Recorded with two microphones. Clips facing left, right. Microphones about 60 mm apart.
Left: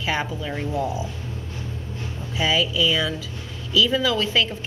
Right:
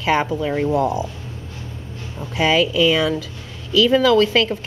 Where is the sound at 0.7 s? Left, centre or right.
Right.